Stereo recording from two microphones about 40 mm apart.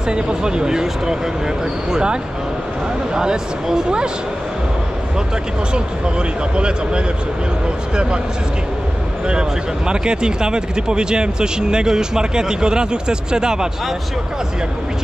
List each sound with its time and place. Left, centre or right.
0.1 s speech: right
3.2 s speech: centre
5.7 s speech: right
9.3 s speech: right